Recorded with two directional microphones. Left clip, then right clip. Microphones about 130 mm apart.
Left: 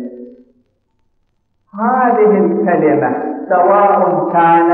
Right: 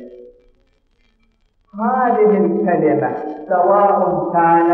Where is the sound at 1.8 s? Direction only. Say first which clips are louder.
Left 3 dB; 30° right (ahead or behind).